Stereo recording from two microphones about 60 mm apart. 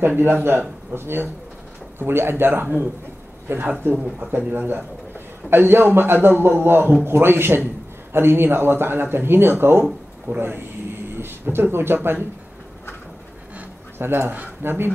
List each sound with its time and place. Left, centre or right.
0.0 s speech: right
13.9 s speech: right